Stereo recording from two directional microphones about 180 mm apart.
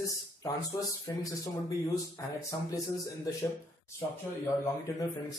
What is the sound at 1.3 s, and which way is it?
A man's voice, 20° left (ahead or behind).